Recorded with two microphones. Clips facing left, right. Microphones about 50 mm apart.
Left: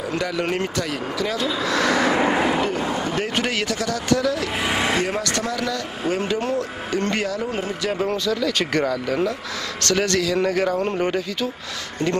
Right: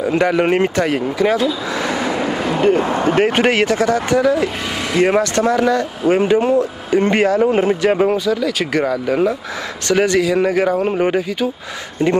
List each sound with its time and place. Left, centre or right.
0.2 s speech: right
1.7 s a sound: centre
2.0 s vehicle: left
2.3 s a sound: centre
2.6 s speech: right
5.0 s speech: right
8.1 s speech: centre